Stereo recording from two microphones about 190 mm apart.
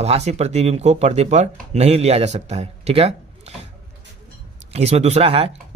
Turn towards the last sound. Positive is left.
turn(degrees=-30)  # may be behind; listen again after turning